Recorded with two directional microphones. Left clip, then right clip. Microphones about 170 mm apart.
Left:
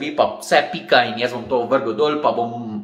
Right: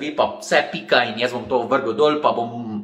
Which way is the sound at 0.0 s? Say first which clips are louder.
Left 2 dB; 5° left (ahead or behind).